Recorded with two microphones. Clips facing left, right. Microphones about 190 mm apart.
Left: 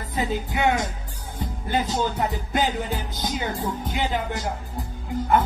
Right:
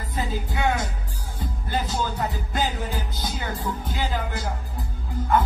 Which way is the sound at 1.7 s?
25° left (ahead or behind).